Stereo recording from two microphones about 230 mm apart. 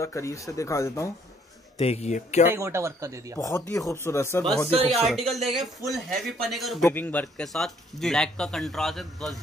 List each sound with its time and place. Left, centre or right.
0.0 s speech: centre
1.8 s speech: left
2.4 s speech: centre
3.3 s speech: centre
4.8 s speech: centre